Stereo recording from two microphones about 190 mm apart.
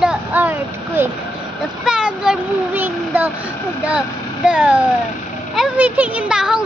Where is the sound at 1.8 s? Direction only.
5° right (ahead or behind).